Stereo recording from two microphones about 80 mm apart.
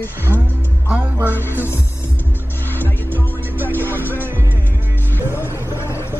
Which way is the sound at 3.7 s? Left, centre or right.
Left.